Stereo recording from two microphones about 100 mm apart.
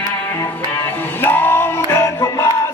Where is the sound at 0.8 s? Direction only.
20° left (ahead or behind).